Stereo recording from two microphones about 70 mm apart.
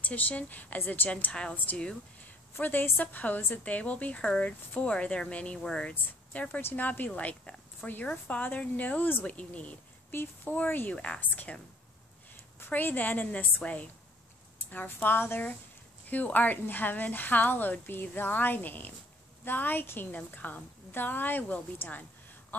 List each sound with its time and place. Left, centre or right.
0.0 s a woman's voice: left
12.5 s a woman's voice: left
22.5 s a sound: left